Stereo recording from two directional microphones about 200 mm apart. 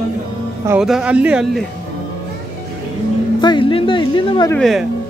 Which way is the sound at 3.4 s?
25° left (ahead or behind).